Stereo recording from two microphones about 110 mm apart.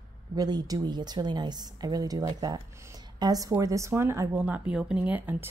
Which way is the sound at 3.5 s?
30° right (ahead or behind).